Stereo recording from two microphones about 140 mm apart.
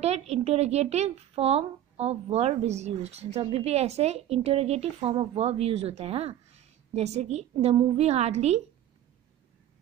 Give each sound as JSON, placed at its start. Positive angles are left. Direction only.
{"t": 0.0, "sound": "speech", "side_deg": -50}